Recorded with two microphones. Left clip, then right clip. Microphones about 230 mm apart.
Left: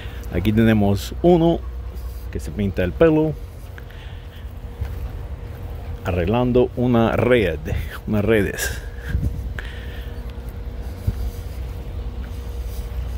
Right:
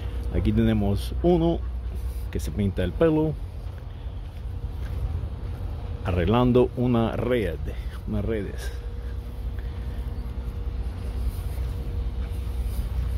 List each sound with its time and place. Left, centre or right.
0.3 s speech: centre
6.0 s speech: centre
6.8 s speech: centre